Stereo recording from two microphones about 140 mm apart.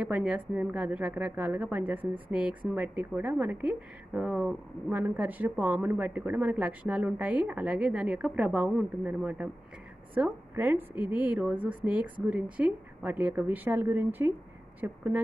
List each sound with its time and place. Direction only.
0.0 s a woman's voice: 10° right (ahead or behind)